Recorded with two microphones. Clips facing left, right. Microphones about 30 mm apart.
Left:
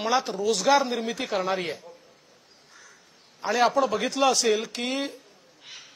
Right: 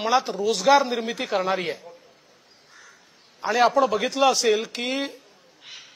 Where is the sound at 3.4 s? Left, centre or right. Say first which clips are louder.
Right 3 dB; centre.